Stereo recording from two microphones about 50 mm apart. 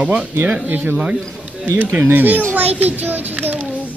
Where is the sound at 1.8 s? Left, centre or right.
Right.